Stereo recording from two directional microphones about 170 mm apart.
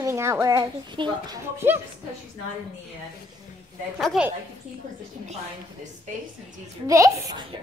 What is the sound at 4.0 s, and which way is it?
Speech, centre (ahead or behind).